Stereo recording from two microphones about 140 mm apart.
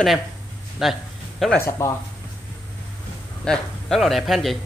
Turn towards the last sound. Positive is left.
turn(degrees=0)  # may be behind; listen again after turning